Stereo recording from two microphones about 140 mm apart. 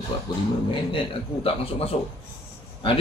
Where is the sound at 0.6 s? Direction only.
40° left (ahead or behind).